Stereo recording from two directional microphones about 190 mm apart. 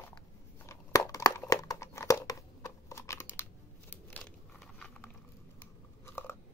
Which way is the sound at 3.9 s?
5° left (ahead or behind).